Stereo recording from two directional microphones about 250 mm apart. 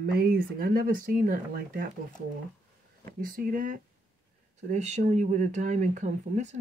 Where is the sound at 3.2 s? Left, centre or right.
Right.